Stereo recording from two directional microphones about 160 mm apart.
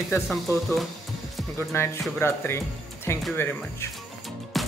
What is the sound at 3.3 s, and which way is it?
Speech, 15° left (ahead or behind).